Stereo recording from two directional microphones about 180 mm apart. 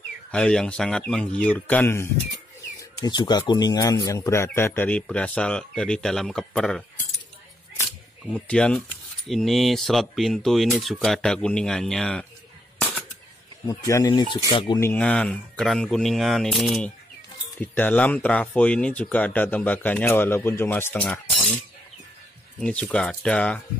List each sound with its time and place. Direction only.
0.3 s speech: 5° left (ahead or behind)
2.8 s a man's voice: 20° left (ahead or behind); by 6.8 s 5° left (ahead or behind)
7.8 s camera: 5° left (ahead or behind)
9.3 s speech: centre (ahead or behind)
13.7 s speech: 20° left (ahead or behind)
14.8 s a man's voice: 10° left (ahead or behind)
22.6 s speech: 5° left (ahead or behind)